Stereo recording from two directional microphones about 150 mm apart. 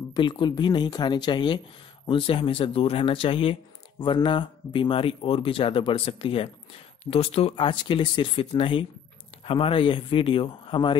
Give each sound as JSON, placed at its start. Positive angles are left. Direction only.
{"t": 0.1, "sound": "speech", "side_deg": 30}